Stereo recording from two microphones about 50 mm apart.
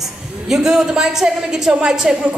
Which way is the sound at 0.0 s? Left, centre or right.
Centre.